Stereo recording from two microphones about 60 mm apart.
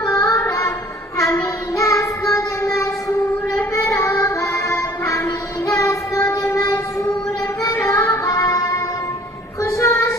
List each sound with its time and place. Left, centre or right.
0.1 s child singing: left
0.4 s a sound: left
1.3 s child singing: left
7.7 s music: left
8.3 s music: left
9.6 s child singing: left